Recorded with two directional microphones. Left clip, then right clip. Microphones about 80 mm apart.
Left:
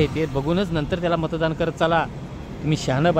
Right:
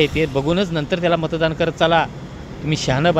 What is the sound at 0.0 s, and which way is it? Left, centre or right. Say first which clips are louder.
Speech: right 5 dB; centre.